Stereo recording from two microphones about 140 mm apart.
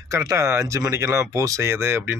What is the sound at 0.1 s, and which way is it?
Speech, 20° right (ahead or behind).